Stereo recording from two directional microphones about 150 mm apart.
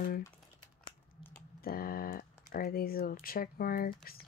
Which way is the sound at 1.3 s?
80° left.